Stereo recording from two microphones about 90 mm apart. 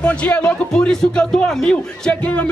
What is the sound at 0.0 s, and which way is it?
Speech, 15° left (ahead or behind).